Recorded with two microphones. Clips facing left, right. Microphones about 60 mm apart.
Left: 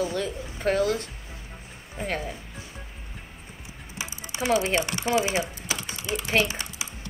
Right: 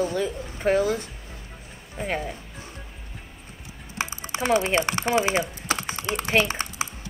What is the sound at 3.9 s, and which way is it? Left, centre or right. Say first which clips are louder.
Typing: right 5 dB; right.